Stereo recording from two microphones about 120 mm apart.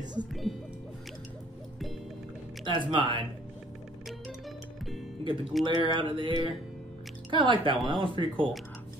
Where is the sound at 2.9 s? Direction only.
40° right (ahead or behind).